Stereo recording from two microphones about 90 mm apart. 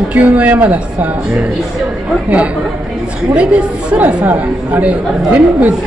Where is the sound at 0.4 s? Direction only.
15° right (ahead or behind).